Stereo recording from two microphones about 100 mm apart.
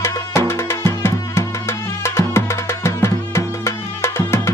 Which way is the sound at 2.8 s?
25° left (ahead or behind).